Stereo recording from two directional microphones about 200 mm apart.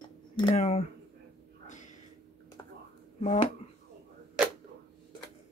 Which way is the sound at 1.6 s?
40° left (ahead or behind).